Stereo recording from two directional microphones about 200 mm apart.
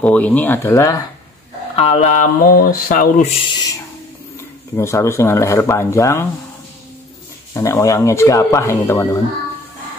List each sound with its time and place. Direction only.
0.0 s speech: 5° left (ahead or behind)
1.8 s speech: 35° left (ahead or behind)
4.7 s speech: 15° left (ahead or behind)
7.5 s speech: 15° left (ahead or behind)